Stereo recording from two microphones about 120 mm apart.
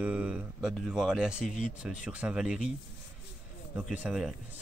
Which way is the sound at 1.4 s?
80° left.